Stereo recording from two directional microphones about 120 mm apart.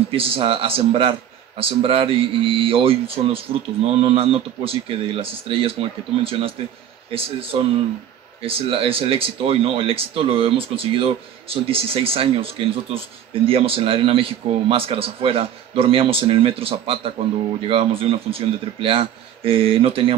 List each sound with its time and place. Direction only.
0.1 s speech: 50° right (ahead or behind)